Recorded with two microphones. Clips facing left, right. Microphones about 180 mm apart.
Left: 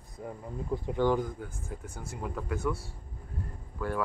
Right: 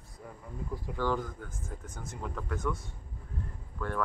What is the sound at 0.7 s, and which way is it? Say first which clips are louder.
Speech: left 5 dB; 20° left (ahead or behind).